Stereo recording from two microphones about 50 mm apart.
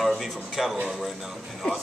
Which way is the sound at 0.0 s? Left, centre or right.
Centre.